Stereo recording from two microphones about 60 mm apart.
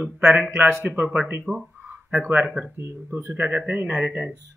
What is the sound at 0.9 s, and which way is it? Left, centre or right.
Speech, right.